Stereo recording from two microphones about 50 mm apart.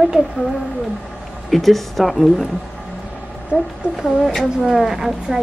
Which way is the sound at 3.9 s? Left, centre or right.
Centre.